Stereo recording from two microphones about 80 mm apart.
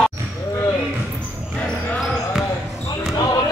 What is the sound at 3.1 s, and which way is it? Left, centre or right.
Basketball bounce, left.